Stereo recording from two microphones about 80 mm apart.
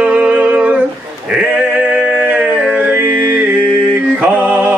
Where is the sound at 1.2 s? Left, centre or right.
Centre.